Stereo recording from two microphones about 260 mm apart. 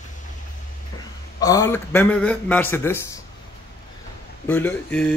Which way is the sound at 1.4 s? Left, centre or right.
Centre.